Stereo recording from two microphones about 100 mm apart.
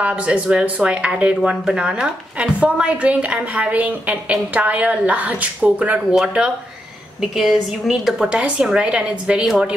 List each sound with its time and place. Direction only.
0.0 s a woman's voice: 10° right (ahead or behind)